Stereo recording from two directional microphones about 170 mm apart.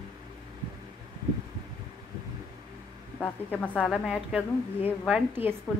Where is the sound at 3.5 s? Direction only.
5° left (ahead or behind).